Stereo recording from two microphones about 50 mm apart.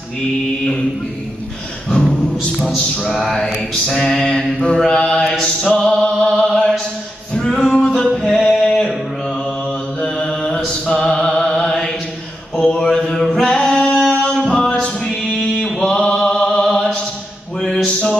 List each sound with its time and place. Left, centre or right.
2.0 s music: centre
2.7 s a sound: centre
3.8 s mantra: centre
5.8 s music: centre
8.1 s a sound: centre
9.9 s mantra: centre
10.7 s music: centre
12.5 s a sound: centre
14.2 s music: centre
15.6 s mantra: centre
15.9 s music: centre
17.6 s music: centre